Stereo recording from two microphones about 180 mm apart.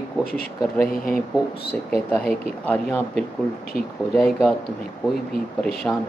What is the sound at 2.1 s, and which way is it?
Speech, 10° left (ahead or behind).